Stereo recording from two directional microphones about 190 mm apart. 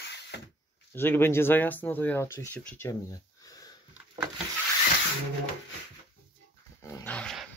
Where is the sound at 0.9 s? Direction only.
10° left (ahead or behind).